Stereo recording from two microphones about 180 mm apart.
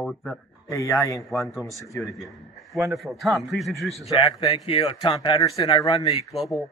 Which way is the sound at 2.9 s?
Centre (ahead or behind).